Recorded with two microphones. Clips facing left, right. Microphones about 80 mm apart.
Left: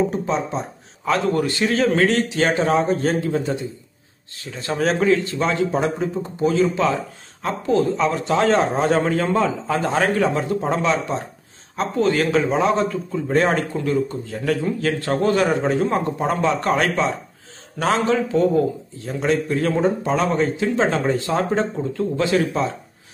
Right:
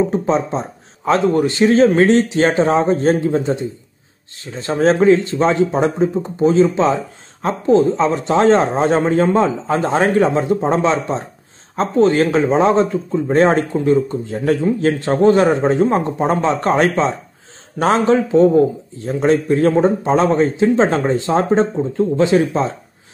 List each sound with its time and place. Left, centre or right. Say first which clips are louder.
0.1 s a man's voice: right 5 dB; right